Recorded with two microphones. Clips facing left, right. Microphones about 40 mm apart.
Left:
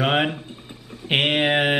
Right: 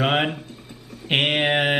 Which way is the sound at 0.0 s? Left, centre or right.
Centre.